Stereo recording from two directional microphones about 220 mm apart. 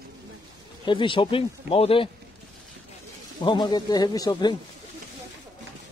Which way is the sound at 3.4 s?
20° left (ahead or behind).